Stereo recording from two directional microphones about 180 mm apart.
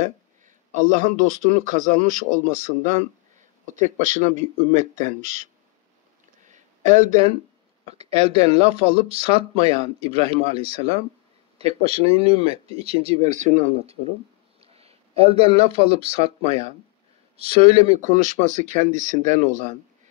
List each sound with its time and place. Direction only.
0.7 s speech: 45° right (ahead or behind)
6.4 s a sound: 45° right (ahead or behind)
7.8 s speech: 35° right (ahead or behind)